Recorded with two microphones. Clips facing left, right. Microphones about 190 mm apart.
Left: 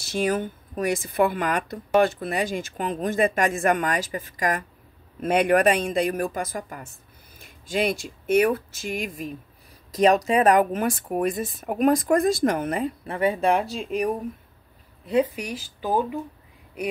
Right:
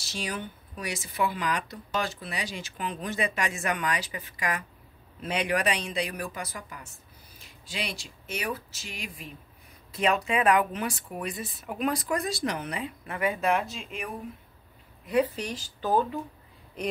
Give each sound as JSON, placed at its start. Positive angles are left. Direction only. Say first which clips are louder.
{"t": 0.0, "sound": "speech", "louder": "left 11 dB", "side_deg": 50}
{"t": 13.0, "sound": "speech", "louder": "left 4 dB", "side_deg": 30}
{"t": 15.3, "sound": "speech", "louder": "left 2 dB", "side_deg": 10}